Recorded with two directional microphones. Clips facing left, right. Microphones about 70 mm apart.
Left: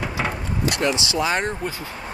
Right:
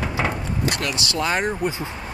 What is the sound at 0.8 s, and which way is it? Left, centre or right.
Speech, left.